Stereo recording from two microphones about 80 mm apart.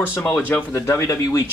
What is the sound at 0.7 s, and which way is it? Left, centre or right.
Speech, left.